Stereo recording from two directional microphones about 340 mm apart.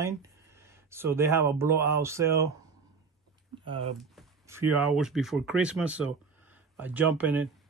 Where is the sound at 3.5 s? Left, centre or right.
Centre.